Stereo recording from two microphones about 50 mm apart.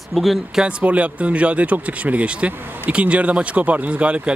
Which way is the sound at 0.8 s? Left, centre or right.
Right.